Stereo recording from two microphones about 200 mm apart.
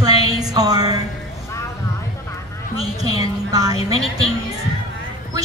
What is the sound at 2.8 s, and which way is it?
A woman's voice, 30° left (ahead or behind).